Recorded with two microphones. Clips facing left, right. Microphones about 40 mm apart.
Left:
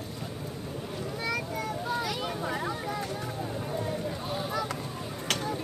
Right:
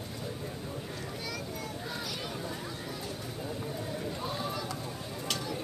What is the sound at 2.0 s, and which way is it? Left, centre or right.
Vehicle, left.